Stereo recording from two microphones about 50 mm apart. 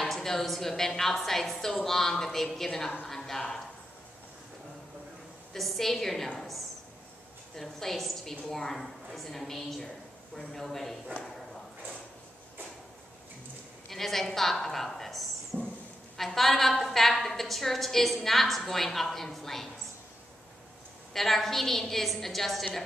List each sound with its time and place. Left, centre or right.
0.0 s a woman's voice: centre
5.5 s a woman's voice: centre
13.8 s a woman's voice: centre
15.5 s a sound: right
16.2 s a woman's voice: centre
21.1 s a woman's voice: centre